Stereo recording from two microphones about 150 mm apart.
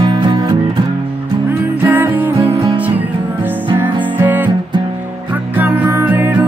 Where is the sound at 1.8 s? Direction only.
15° right (ahead or behind).